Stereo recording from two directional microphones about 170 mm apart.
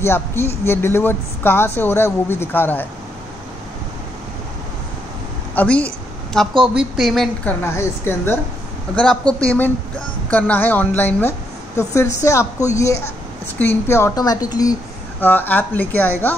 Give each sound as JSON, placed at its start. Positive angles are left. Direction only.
{"t": 0.0, "sound": "a woman's voice", "side_deg": 15}
{"t": 5.5, "sound": "a sound", "side_deg": 10}
{"t": 6.7, "sound": "a woman's voice", "side_deg": -5}
{"t": 7.6, "sound": "a woman's voice", "side_deg": 15}